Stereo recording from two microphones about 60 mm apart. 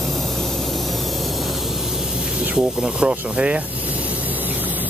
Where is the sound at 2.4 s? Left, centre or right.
Centre.